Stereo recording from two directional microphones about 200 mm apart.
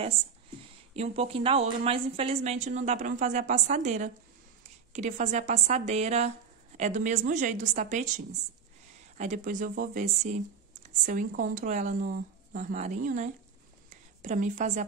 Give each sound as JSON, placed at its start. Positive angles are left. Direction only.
{"t": 0.9, "sound": "speech", "side_deg": -30}
{"t": 9.2, "sound": "a woman's voice", "side_deg": -40}